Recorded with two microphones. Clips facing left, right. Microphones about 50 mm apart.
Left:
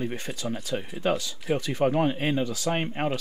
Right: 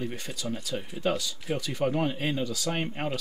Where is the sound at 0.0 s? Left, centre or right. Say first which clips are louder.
Left 3 dB; left.